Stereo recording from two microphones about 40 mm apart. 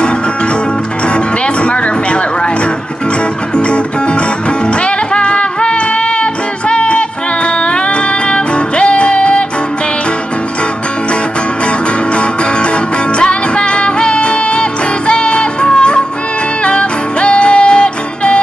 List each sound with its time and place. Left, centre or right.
1.1 s music: left
3.5 s music: left
12.2 s music: left